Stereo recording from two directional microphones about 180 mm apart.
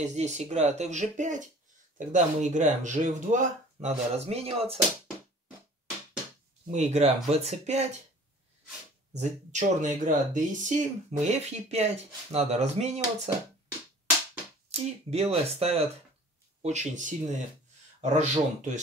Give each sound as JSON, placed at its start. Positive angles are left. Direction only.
{"t": 0.0, "sound": "speech", "side_deg": -40}
{"t": 6.7, "sound": "speech", "side_deg": -40}
{"t": 9.2, "sound": "speech", "side_deg": -40}
{"t": 14.7, "sound": "speech", "side_deg": -35}